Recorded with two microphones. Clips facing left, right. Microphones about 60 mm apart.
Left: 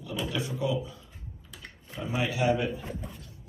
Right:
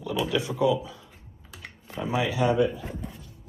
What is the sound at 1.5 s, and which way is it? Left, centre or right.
Computer keyboard, right.